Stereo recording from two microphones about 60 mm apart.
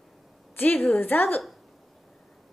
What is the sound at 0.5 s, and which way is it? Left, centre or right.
Speech, left.